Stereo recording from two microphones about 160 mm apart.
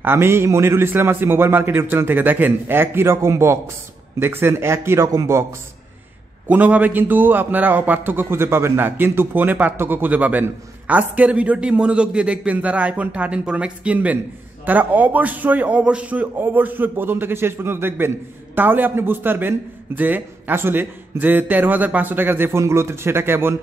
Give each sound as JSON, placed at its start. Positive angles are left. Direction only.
{"t": 0.0, "sound": "a man's voice", "side_deg": -15}
{"t": 6.5, "sound": "a man's voice", "side_deg": -10}